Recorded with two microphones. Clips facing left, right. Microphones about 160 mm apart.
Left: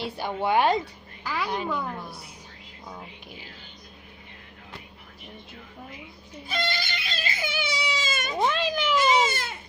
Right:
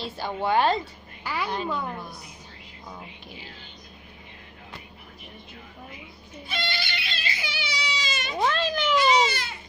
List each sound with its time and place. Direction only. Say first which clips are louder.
0.2 s a woman's voice: even; 15° left (ahead or behind)
1.2 s a woman's voice: even; 5° right (ahead or behind)
6.5 s baby cry: left 2 dB; 45° left (ahead or behind)
8.4 s cat: even; 10° left (ahead or behind)
8.9 s baby cry: right 1 dB; 45° left (ahead or behind)